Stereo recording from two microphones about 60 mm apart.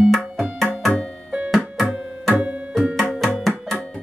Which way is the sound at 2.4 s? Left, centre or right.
Right.